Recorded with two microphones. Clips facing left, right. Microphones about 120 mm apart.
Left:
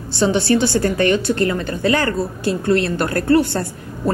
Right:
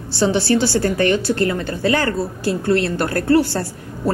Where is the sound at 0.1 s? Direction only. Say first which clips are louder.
Left 1 dB; 20° left (ahead or behind).